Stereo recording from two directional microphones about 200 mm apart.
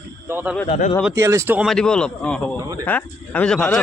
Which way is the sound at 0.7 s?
35° left (ahead or behind).